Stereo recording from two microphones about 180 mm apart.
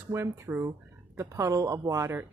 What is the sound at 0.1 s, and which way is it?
Speech, 15° right (ahead or behind).